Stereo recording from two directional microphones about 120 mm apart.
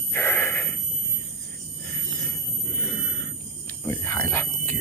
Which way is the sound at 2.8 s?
Centre (ahead or behind).